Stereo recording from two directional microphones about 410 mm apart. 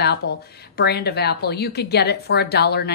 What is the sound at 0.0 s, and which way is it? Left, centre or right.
A woman's voice, left.